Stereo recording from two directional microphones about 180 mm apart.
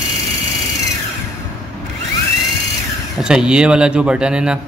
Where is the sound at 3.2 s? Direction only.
5° right (ahead or behind).